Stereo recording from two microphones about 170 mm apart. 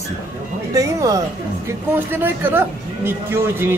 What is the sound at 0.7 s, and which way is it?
Speech, 20° right (ahead or behind).